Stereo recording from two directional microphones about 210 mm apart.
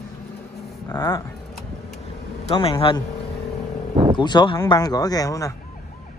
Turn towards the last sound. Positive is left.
turn(degrees=15)  # may be behind; listen again after turning